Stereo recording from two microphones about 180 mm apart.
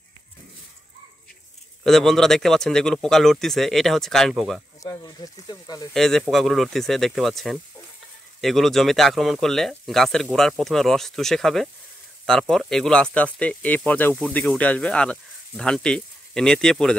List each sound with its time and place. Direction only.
1.9 s speech: centre (ahead or behind)
4.8 s speech: 20° left (ahead or behind)
5.9 s speech: centre (ahead or behind)